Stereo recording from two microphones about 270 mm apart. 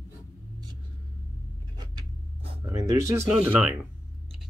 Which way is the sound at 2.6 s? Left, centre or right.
Centre.